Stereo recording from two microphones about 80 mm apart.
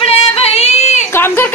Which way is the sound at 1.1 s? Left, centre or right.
Left.